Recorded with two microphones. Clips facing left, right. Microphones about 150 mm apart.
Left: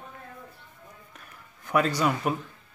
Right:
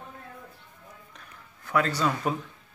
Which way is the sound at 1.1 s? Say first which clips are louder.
Even; 15° left (ahead or behind).